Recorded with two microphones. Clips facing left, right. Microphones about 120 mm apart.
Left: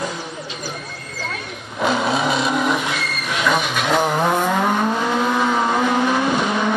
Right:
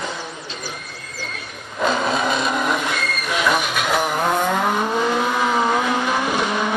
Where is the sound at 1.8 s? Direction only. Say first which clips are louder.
Left 1 dB; 5° left (ahead or behind).